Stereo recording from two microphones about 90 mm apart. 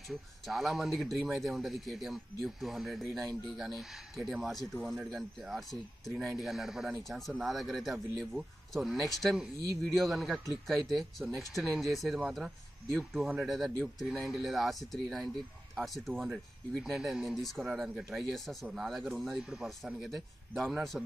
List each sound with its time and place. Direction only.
0.1 s speech: centre (ahead or behind)